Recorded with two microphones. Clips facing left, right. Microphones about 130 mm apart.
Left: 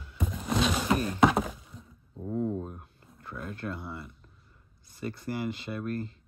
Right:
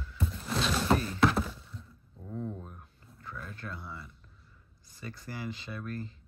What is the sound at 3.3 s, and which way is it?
Speech, 10° left (ahead or behind).